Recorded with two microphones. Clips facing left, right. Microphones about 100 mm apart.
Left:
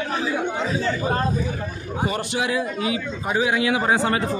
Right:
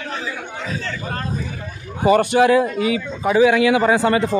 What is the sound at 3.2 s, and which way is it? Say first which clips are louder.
Speech: right 8 dB; 75° right (ahead or behind).